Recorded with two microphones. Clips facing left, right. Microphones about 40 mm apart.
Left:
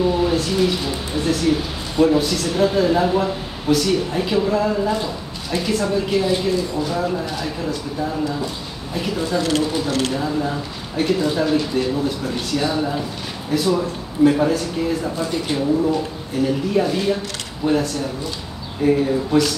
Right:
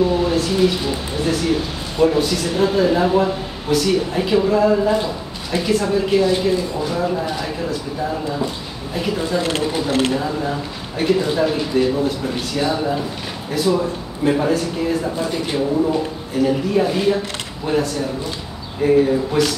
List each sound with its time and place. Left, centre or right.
0.0 s a woman's voice: centre
8.9 s a man's voice: centre
9.4 s speech: right
10.1 s a man's voice: centre
14.2 s a man's voice: centre
14.5 s a man's voice: centre
18.9 s a woman's voice: centre